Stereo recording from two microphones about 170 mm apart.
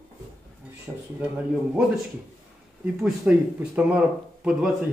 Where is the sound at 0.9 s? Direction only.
10° right (ahead or behind).